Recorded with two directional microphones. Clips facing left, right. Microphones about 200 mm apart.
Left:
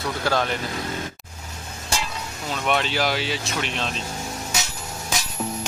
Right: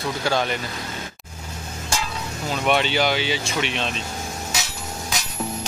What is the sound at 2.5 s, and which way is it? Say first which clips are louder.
Speech: right 3 dB; 5° right (ahead or behind).